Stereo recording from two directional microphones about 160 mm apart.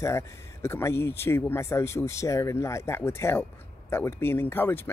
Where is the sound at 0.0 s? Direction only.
15° left (ahead or behind).